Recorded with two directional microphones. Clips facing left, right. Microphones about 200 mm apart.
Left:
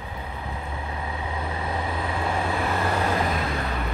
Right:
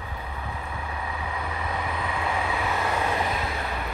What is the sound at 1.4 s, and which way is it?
Vehicle, 25° left (ahead or behind).